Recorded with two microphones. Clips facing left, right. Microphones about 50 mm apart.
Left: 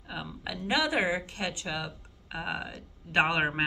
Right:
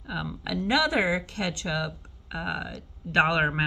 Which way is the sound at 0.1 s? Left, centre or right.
Centre.